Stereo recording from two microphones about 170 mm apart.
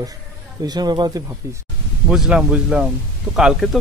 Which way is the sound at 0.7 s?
25° right (ahead or behind).